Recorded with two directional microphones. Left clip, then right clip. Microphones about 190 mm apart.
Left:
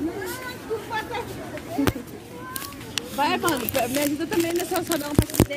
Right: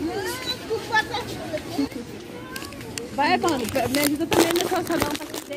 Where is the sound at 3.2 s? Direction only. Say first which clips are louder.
Right 2 dB; 5° left (ahead or behind).